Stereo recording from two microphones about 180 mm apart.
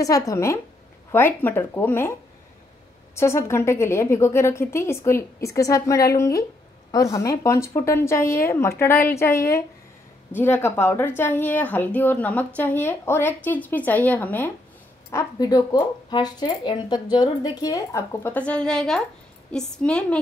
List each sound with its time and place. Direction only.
0.0 s a woman's voice: 20° left (ahead or behind)
3.2 s a woman's voice: 15° left (ahead or behind)